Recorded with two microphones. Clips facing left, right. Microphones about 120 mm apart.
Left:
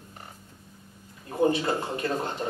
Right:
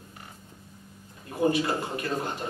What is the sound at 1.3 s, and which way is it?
A man's voice, 30° left (ahead or behind).